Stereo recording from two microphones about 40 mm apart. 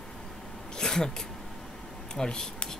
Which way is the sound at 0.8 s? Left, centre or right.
Centre.